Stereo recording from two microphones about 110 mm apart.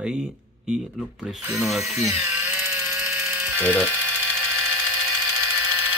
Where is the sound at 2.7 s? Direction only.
20° right (ahead or behind).